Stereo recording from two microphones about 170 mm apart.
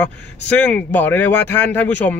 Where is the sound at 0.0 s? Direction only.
10° left (ahead or behind).